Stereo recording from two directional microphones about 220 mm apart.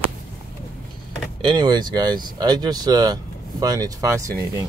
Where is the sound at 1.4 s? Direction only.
20° right (ahead or behind).